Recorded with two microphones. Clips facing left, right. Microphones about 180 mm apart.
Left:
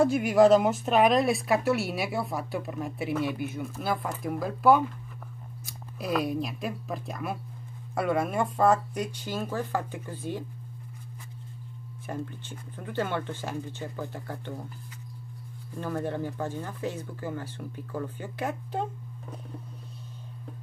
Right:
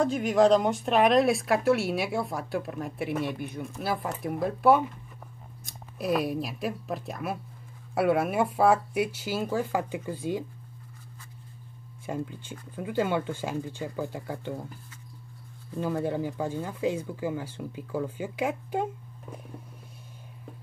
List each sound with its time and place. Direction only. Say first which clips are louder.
0.0 s speech: left 2 dB; 10° left (ahead or behind); by 10.4 s 10° right (ahead or behind)
12.1 s speech: right 2 dB; 10° right (ahead or behind)
15.8 s speech: right 3 dB; 10° right (ahead or behind)